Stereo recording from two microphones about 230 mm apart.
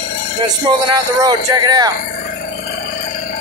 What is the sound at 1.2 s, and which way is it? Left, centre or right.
Speech, centre.